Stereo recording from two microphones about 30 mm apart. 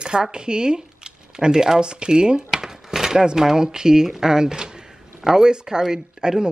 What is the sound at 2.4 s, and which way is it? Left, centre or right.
Speech, centre.